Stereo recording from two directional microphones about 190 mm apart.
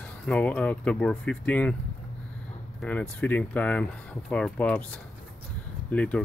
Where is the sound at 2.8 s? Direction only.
5° left (ahead or behind).